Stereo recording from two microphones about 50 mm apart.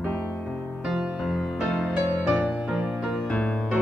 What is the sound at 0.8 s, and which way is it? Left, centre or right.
Music, centre.